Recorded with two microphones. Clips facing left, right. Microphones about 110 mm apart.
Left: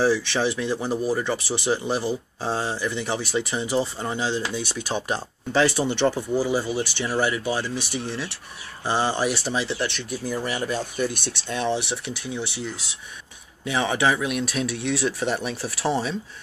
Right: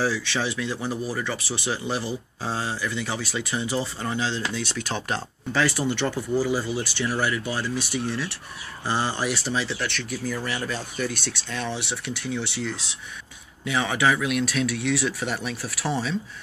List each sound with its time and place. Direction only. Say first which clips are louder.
0.0 s speech: left 4 dB; 25° left (ahead or behind)
5.5 s speech: left 3 dB; 25° left (ahead or behind)
15.1 s speech: left 3 dB; 35° left (ahead or behind)